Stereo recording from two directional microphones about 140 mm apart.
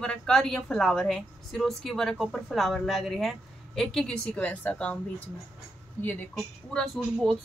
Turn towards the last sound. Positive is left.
turn(degrees=0)  # may be behind; listen again after turning